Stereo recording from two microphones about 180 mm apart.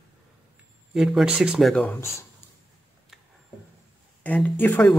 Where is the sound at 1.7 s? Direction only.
10° left (ahead or behind).